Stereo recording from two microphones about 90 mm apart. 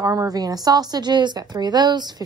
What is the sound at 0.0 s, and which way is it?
A woman's voice, 40° right (ahead or behind).